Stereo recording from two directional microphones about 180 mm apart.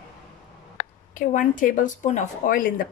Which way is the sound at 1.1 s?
45° left (ahead or behind).